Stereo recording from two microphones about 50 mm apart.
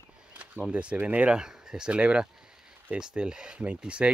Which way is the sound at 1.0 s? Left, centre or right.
Right.